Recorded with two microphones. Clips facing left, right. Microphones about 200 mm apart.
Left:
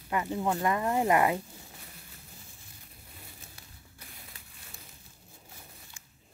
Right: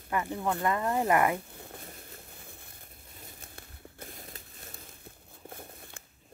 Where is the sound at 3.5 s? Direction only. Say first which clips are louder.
Right 6 dB; 45° right (ahead or behind).